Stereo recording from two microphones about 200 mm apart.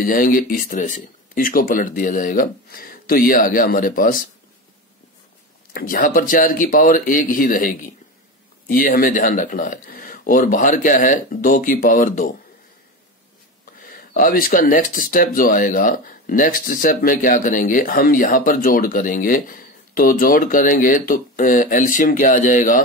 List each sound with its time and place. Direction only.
0.0 s speech: 45° left (ahead or behind)
5.7 s speech: 45° left (ahead or behind)
13.8 s speech: 45° left (ahead or behind)